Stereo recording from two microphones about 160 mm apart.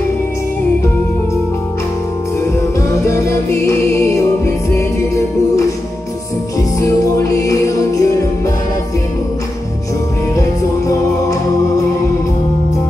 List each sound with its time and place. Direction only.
3.1 s music: 20° left (ahead or behind)
7.3 s music: 20° left (ahead or behind)